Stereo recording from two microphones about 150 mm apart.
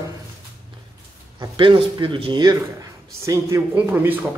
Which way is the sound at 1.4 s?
35° right (ahead or behind).